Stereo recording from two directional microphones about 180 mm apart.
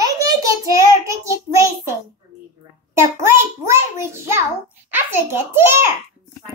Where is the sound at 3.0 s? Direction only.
15° right (ahead or behind).